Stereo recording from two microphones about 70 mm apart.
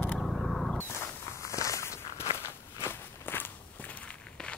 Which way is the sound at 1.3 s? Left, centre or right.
Left.